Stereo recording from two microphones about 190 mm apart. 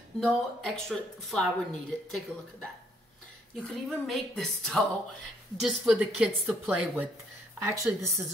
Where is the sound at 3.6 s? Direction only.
5° left (ahead or behind).